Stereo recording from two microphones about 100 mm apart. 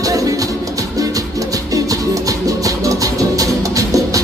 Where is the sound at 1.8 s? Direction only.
35° right (ahead or behind).